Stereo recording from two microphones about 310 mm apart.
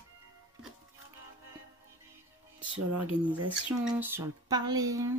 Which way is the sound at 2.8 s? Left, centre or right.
Right.